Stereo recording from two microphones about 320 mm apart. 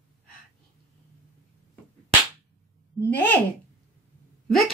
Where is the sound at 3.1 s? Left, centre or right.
Centre.